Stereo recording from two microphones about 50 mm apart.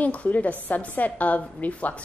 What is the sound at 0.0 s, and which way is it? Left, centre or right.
A woman's voice, left.